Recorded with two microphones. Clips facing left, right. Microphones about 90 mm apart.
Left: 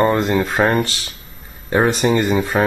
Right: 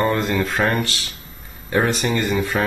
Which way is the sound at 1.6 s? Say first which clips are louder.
Left 4 dB; 25° left (ahead or behind).